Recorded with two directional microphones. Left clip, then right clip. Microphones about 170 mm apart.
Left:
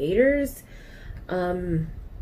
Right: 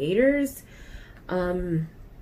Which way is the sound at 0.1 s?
25° right (ahead or behind).